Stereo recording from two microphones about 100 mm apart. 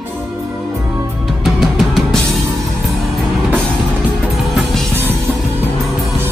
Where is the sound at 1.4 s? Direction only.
Centre (ahead or behind).